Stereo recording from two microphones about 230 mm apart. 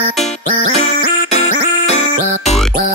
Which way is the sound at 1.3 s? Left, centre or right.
Left.